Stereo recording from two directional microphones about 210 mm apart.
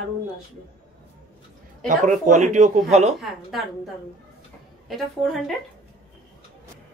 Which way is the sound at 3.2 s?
Centre (ahead or behind).